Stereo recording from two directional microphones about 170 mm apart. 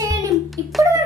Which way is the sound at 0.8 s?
20° right (ahead or behind).